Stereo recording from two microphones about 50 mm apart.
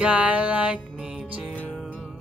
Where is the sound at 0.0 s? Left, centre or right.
Right.